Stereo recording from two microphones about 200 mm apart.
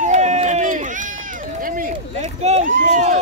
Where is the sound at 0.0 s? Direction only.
35° right (ahead or behind).